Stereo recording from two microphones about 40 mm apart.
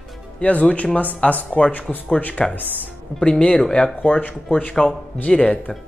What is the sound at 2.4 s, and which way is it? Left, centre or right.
Speech, centre.